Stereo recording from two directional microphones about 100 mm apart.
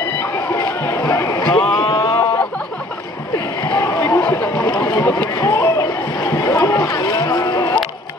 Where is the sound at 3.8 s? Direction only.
30° left (ahead or behind).